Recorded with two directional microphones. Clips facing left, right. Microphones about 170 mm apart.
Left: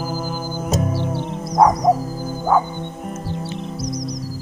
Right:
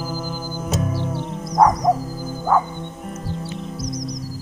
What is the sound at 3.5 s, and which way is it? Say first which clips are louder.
Music: left 2 dB; 30° left (ahead or behind).